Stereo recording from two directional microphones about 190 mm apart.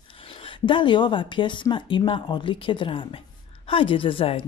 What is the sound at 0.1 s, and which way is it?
Speech, 30° left (ahead or behind).